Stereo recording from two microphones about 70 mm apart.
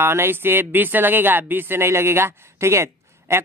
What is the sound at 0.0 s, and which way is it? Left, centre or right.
Speech, right.